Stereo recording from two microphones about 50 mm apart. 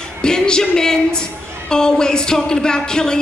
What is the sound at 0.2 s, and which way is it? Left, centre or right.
A woman's voice, centre.